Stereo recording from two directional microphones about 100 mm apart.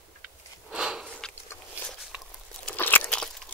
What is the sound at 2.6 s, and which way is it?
Crunch, 20° left (ahead or behind).